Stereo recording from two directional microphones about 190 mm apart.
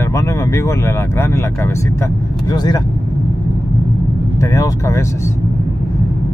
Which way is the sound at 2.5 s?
20° left (ahead or behind).